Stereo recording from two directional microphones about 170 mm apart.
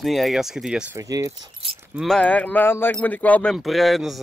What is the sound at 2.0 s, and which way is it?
Speech, 5° left (ahead or behind).